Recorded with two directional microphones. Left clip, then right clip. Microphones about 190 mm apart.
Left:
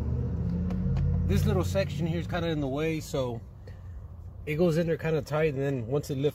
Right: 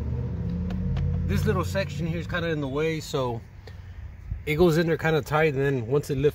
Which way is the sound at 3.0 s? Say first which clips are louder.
Right 3 dB; 50° right (ahead or behind).